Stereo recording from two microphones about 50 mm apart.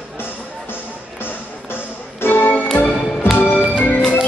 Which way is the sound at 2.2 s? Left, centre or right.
Left.